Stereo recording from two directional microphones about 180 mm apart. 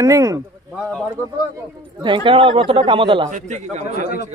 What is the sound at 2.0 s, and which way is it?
Speech, 30° right (ahead or behind).